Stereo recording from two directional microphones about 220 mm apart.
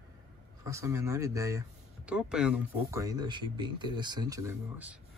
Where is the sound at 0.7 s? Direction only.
15° right (ahead or behind).